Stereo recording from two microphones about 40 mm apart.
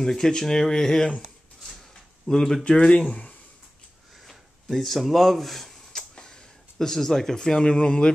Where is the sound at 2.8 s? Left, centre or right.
Left.